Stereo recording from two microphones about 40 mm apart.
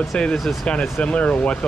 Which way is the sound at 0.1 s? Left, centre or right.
Left.